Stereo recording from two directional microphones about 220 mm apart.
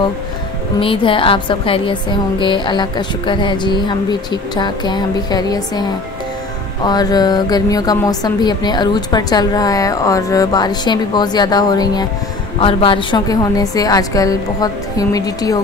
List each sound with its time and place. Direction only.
0.7 s a woman's voice: 25° left (ahead or behind)